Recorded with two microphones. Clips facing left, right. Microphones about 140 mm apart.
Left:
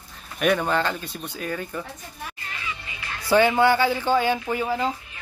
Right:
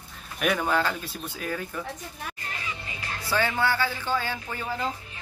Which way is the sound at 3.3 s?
15° left (ahead or behind).